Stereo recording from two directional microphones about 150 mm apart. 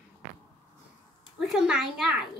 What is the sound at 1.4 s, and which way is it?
Speech, 5° right (ahead or behind).